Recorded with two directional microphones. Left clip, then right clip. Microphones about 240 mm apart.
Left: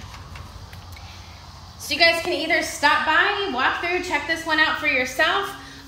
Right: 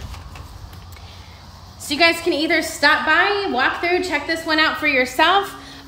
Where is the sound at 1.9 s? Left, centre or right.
Centre.